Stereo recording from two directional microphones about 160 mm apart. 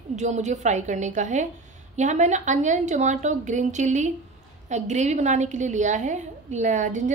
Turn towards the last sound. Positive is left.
turn(degrees=-55)  # may be behind; listen again after turning